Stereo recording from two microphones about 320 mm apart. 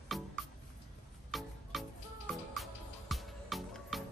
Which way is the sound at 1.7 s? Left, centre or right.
Centre.